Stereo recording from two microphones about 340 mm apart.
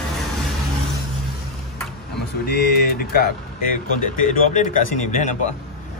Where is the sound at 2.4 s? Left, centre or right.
Left.